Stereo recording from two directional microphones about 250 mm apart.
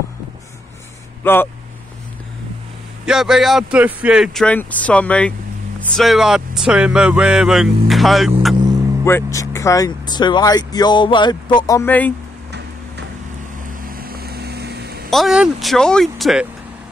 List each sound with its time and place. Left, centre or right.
1.2 s speech: centre
3.1 s speech: centre
8.5 s vehicle: centre
9.0 s speech: centre
12.4 s a sound: right
13.8 s vehicle: right
15.0 s speech: centre